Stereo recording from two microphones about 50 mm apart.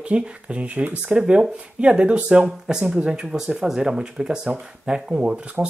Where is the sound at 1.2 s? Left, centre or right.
Centre.